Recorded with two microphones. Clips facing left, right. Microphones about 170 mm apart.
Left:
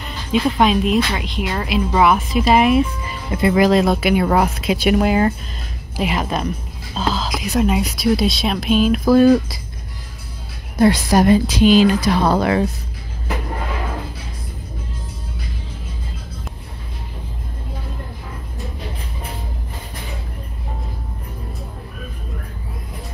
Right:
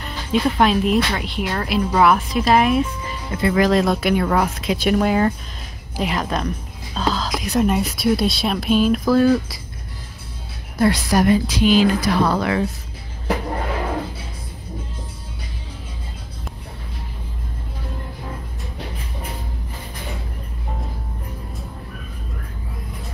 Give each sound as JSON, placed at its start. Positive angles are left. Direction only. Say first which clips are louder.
{"t": 0.0, "sound": "speech", "louder": "left 1 dB", "side_deg": 0}
{"t": 3.3, "sound": "speech", "louder": "left 3 dB", "side_deg": 15}
{"t": 9.0, "sound": "a woman's voice", "louder": "left 4 dB", "side_deg": 20}
{"t": 10.8, "sound": "a woman's voice", "louder": "left 3 dB", "side_deg": 25}